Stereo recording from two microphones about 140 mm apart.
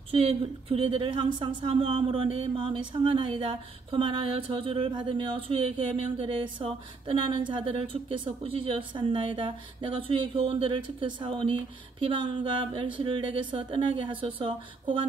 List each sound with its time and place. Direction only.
0.1 s a woman's voice: 40° right (ahead or behind)